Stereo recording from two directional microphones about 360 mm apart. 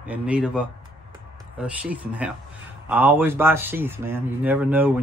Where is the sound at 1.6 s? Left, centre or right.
Centre.